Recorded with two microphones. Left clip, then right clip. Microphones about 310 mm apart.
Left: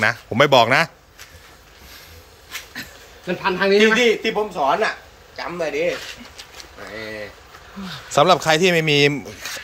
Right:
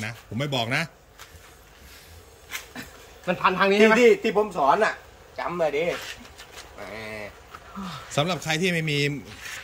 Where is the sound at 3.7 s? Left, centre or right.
Right.